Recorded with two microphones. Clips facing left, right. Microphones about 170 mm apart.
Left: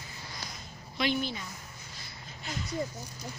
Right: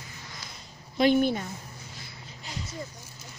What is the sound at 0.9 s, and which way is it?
Speech, 50° right (ahead or behind).